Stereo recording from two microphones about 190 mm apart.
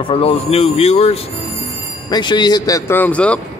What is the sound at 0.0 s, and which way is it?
Speech, 30° left (ahead or behind).